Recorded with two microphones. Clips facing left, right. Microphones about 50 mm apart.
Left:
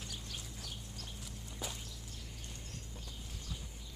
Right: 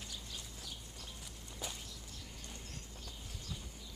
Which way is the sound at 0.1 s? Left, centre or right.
Left.